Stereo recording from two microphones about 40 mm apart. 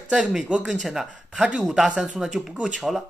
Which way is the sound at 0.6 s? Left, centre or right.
Centre.